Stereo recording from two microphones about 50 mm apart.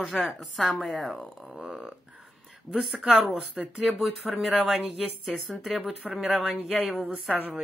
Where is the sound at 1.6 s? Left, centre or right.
Centre.